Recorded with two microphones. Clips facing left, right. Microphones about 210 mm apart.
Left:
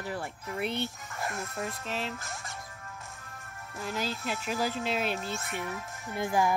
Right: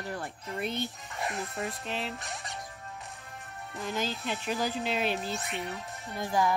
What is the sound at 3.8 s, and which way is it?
Music, centre (ahead or behind).